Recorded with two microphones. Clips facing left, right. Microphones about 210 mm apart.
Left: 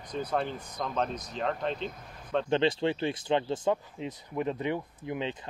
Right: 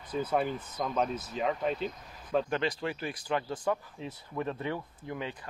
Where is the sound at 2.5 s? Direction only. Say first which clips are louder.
Left 6 dB; 25° left (ahead or behind).